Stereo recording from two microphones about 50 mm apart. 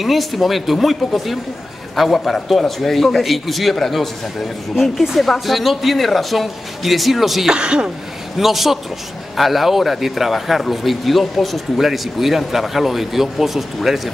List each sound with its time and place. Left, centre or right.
0.0 s a man's voice: centre
7.5 s speech: centre
8.4 s a man's voice: centre